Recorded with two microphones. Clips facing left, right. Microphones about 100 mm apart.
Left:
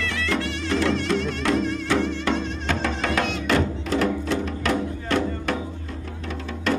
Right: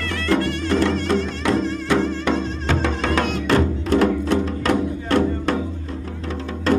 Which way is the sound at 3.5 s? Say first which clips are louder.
Right 5 dB; 50° right (ahead or behind).